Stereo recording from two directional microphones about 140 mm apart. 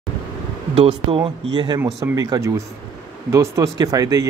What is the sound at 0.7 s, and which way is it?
Speech, 35° right (ahead or behind).